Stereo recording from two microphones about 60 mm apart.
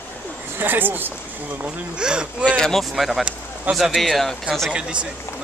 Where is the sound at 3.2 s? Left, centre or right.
Centre.